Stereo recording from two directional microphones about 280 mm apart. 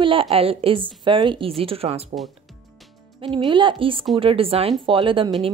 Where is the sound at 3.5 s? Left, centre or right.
Centre.